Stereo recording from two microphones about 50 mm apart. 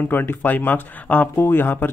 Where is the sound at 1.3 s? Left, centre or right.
Left.